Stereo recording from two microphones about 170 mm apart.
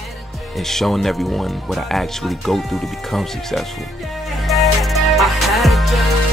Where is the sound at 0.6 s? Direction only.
Centre (ahead or behind).